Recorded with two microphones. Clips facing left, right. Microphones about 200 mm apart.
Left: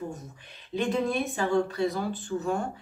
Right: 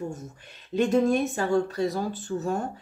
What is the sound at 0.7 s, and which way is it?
Speech, 45° right (ahead or behind).